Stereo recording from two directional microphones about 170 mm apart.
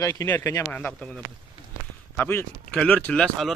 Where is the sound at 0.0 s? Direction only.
15° left (ahead or behind).